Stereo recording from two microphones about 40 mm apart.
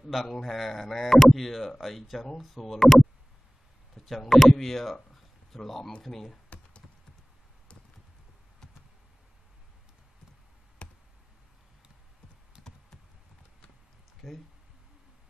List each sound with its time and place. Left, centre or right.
0.0 s speech: centre
5.1 s a sound: centre
6.0 s speech: centre
10.8 s a sound: left
12.6 s computer keyboard: centre
14.2 s speech: centre